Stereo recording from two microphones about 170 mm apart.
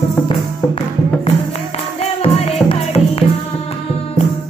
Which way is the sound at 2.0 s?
35° left (ahead or behind).